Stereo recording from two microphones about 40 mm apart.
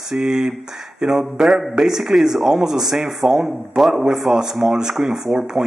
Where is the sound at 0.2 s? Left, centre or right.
Centre.